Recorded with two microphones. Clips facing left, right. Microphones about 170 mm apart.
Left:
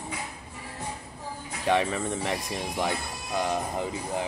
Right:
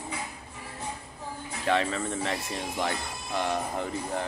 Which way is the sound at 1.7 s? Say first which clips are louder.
Left 2 dB; 15° left (ahead or behind).